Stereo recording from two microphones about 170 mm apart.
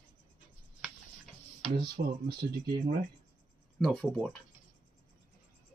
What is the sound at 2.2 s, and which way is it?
Speech, 65° right (ahead or behind).